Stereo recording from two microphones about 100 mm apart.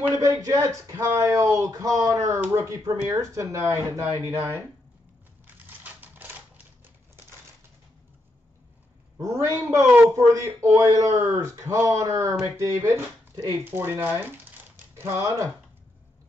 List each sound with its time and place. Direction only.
0.0 s speech: 30° right (ahead or behind)
5.9 s typewriter: 15° right (ahead or behind)
9.2 s speech: 35° right (ahead or behind)